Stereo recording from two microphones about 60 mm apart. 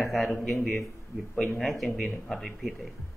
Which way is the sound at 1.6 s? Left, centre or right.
Centre.